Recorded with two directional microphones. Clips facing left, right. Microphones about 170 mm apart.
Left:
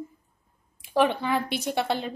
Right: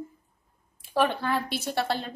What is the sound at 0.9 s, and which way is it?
A woman's voice, 10° left (ahead or behind).